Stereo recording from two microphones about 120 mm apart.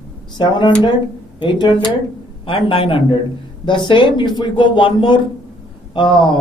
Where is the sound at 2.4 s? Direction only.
45° left (ahead or behind).